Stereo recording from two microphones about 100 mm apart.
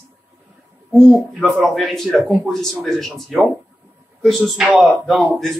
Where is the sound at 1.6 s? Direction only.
Centre (ahead or behind).